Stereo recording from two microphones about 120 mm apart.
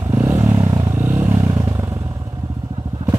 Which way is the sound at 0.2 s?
25° right (ahead or behind).